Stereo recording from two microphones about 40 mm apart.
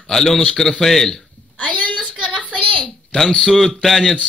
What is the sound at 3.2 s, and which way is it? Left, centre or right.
Speech, centre.